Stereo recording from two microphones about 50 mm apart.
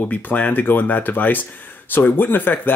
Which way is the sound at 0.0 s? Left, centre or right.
Left.